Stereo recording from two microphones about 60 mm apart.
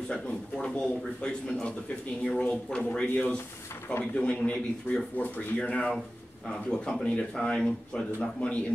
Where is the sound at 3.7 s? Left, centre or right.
Left.